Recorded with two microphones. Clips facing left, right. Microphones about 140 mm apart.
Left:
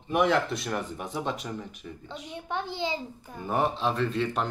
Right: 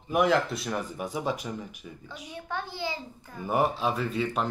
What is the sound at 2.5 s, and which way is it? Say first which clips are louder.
Speech: left 3 dB; 20° left (ahead or behind).